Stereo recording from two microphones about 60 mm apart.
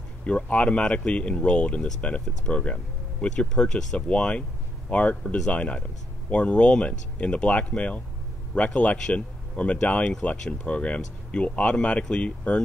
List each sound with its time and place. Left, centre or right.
0.2 s speech: centre